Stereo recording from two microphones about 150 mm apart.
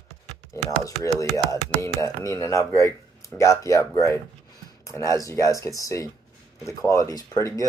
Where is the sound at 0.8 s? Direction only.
20° left (ahead or behind).